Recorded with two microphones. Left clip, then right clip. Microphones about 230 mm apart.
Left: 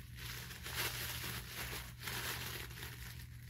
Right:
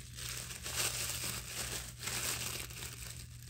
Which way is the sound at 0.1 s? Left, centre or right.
Right.